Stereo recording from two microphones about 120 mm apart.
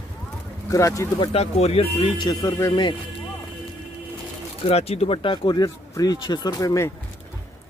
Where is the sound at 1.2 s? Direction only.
55° left (ahead or behind).